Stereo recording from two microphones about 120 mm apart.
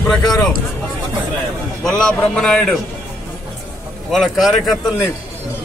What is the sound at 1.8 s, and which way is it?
Speech, 5° left (ahead or behind).